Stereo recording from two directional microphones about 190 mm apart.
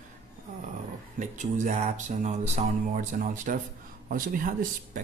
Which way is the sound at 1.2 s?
40° right (ahead or behind).